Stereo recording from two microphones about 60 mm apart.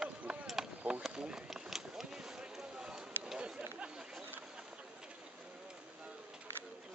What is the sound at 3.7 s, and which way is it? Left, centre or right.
Chatter, centre.